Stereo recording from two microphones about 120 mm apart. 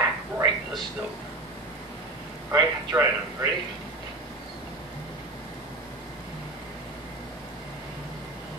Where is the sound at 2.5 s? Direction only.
25° right (ahead or behind).